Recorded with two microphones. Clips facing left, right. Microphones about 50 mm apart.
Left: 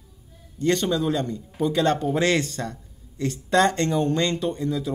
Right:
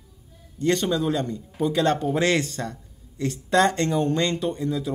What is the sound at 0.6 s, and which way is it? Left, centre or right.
Speech, centre.